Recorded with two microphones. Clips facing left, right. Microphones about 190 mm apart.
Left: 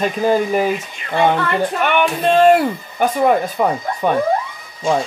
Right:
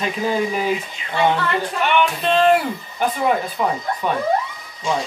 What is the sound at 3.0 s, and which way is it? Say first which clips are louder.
Speech: left 5 dB; 45° left (ahead or behind).